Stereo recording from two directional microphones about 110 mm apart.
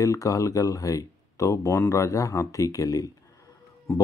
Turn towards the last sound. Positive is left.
turn(degrees=25)  # may be behind; listen again after turning